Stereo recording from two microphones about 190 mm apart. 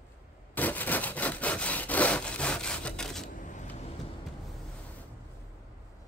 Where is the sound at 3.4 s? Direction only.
40° left (ahead or behind).